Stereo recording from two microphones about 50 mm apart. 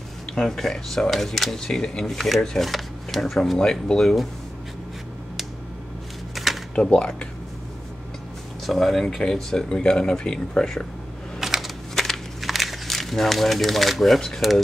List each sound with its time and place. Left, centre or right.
0.3 s speech: centre
6.3 s a sound: centre
6.7 s speech: left
8.6 s speech: centre
11.3 s typewriter: centre
11.9 s crushing: centre
12.8 s speech: centre